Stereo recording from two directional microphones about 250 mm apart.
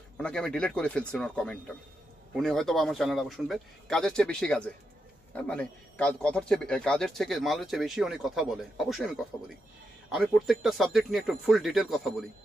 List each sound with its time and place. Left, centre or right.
0.2 s a man's voice: centre